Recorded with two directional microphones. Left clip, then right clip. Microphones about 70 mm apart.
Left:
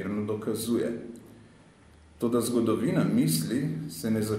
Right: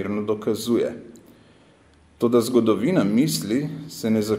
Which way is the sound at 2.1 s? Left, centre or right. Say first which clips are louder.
Right 8 dB; right.